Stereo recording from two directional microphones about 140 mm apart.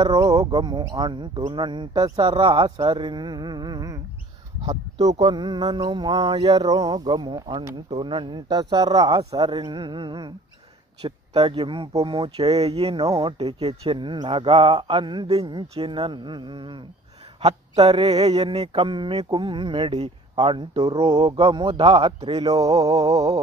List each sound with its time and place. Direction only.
0.0 s speech: 30° right (ahead or behind)
4.9 s speech: 45° right (ahead or behind); by 6.3 s 30° right (ahead or behind)
6.3 s a sound: 45° right (ahead or behind)
6.6 s speech: 25° right (ahead or behind)
17.8 s speech: 45° right (ahead or behind)
22.4 s speech: 25° right (ahead or behind)